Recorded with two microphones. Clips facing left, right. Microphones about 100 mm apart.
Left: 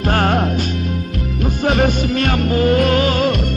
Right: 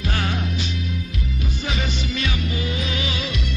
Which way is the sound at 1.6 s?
50° left (ahead or behind).